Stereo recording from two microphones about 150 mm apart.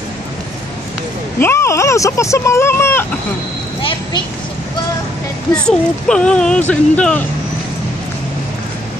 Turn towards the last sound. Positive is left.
turn(degrees=10)  # may be behind; listen again after turning